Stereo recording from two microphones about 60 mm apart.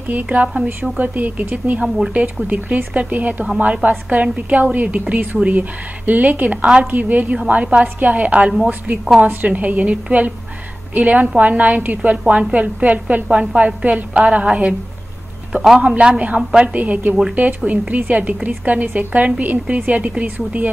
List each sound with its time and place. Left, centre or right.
0.1 s a woman's voice: centre
9.2 s a woman's voice: right
15.8 s a woman's voice: centre